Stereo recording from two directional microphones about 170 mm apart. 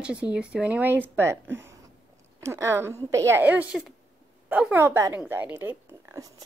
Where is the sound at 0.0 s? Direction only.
5° right (ahead or behind).